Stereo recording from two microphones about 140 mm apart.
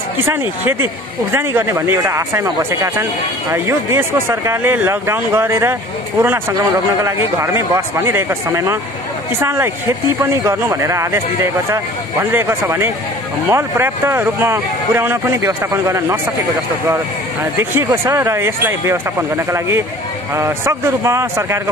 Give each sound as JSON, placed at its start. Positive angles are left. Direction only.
{"t": 0.2, "sound": "speech", "side_deg": -15}